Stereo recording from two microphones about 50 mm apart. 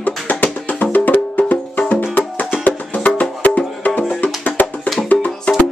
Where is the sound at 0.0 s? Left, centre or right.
Left.